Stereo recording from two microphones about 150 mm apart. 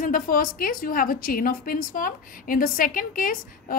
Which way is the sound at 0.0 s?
70° left (ahead or behind).